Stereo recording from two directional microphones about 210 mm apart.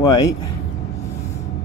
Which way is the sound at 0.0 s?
15° left (ahead or behind).